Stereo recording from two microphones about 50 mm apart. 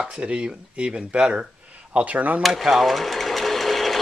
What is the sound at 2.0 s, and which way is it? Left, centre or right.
Speech, right.